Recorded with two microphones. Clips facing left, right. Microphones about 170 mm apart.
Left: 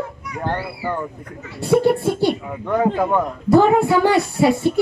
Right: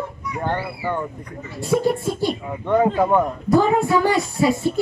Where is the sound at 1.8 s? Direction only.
65° left (ahead or behind).